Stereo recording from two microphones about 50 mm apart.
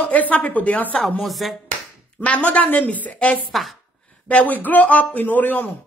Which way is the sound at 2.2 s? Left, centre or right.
Left.